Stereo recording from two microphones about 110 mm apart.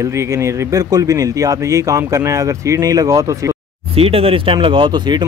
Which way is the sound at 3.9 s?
60° right (ahead or behind).